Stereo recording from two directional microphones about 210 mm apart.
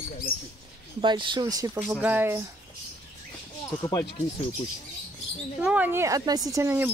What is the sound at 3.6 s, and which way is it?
Speech, 20° left (ahead or behind).